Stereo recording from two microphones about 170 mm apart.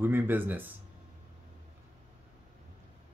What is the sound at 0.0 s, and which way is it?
Speech, 10° right (ahead or behind).